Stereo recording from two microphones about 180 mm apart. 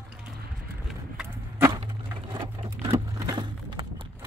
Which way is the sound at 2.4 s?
30° right (ahead or behind).